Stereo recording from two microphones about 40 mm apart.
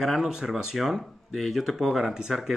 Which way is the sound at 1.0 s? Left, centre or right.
Centre.